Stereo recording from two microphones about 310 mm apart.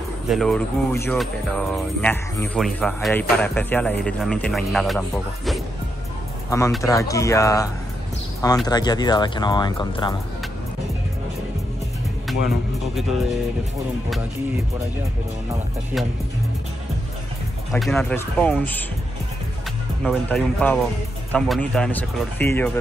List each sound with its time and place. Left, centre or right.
0.3 s a man's voice: centre
17.7 s a man's voice: centre
20.0 s a man's voice: centre